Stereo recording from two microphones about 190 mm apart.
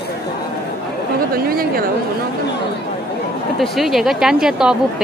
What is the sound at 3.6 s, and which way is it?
A woman's voice, centre (ahead or behind).